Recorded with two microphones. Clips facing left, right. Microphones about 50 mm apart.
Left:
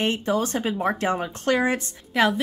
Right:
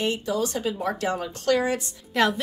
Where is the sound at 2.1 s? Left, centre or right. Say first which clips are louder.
Left 2 dB; centre.